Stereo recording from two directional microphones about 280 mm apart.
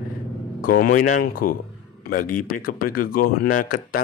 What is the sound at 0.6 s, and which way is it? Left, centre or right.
Speech, left.